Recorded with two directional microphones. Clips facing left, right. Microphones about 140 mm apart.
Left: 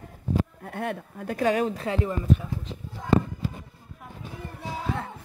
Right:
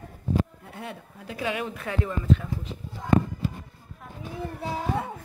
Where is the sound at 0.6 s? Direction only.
55° left (ahead or behind); by 2.5 s 20° left (ahead or behind).